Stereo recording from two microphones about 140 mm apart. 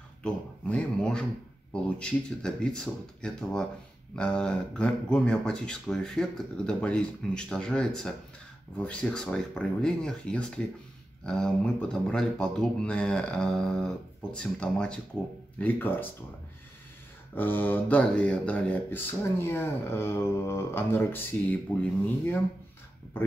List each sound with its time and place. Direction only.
0.2 s speech: 5° left (ahead or behind)
17.4 s speech: 15° left (ahead or behind)